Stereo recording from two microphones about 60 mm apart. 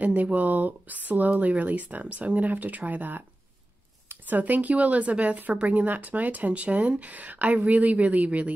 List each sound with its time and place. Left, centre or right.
0.0 s speech: right